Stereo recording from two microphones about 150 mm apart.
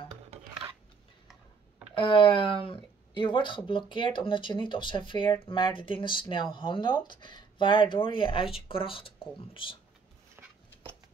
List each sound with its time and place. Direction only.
2.0 s speech: 35° left (ahead or behind)